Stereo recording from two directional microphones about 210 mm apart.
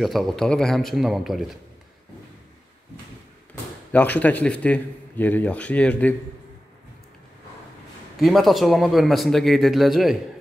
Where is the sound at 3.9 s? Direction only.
5° left (ahead or behind).